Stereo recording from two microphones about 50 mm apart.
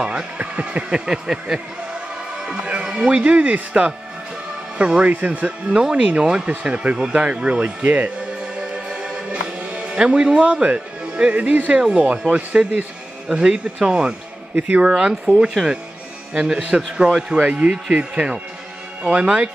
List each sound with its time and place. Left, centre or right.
0.0 s speech: right
5.7 s speech: centre
8.5 s music: centre
11.7 s speech: centre
14.9 s speech: centre